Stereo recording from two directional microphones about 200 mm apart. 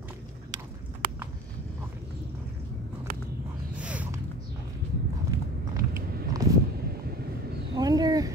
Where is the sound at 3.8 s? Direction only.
5° right (ahead or behind).